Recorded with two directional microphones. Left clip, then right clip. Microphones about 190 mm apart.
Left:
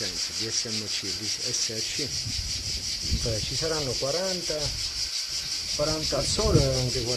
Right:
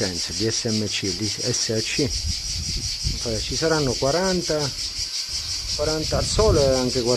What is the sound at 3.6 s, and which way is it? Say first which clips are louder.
Speech: right 9 dB; 15° right (ahead or behind).